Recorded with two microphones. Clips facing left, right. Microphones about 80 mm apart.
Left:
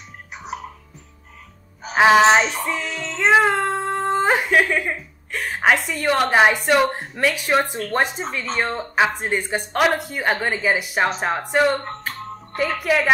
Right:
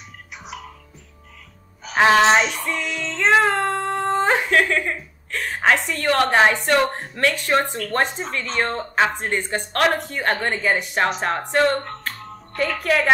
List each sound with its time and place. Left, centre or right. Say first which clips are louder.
0.5 s music: left 5 dB; left
2.0 s a woman's voice: left 2 dB; centre
2.4 s music: left 1 dB; left
3.1 s a woman's voice: left 1 dB; centre
12.0 s music: left 2 dB; centre
12.7 s a woman's voice: even; centre